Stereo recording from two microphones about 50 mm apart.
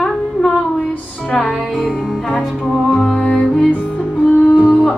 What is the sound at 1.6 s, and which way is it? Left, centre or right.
Music, centre.